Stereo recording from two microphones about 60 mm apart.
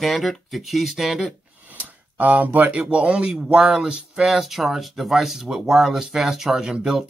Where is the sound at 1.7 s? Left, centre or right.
Right; by 7.0 s centre.